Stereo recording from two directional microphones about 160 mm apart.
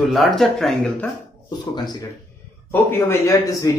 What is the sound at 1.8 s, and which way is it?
Speech, 25° left (ahead or behind).